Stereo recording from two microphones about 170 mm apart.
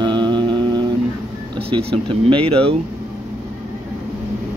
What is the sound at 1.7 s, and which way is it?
Speech, 30° right (ahead or behind).